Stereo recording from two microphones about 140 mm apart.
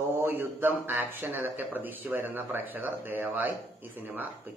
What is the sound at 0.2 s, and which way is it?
Speech, 15° right (ahead or behind).